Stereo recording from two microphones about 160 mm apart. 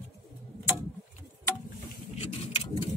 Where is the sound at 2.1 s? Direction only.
40° left (ahead or behind).